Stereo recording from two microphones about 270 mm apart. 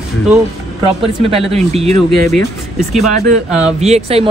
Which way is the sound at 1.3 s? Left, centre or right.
Right.